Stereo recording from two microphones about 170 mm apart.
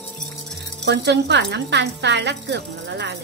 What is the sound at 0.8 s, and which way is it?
Speech, 80° right.